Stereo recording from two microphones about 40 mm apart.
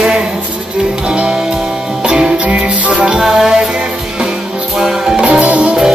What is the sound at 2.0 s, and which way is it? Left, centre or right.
Music, centre.